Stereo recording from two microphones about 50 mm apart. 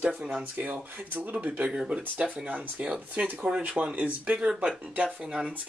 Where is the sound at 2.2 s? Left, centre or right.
Right.